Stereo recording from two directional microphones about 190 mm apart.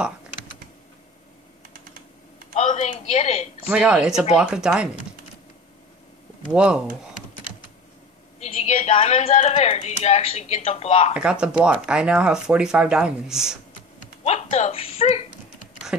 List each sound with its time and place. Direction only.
2.5 s a sound: 35° left (ahead or behind)
3.6 s speech: 5° right (ahead or behind)
6.4 s speech: 5° right (ahead or behind)
8.4 s a woman's voice: 35° left (ahead or behind)
11.1 s speech: 5° right (ahead or behind)
14.2 s a woman's voice: 35° left (ahead or behind)
15.9 s speech: 5° right (ahead or behind)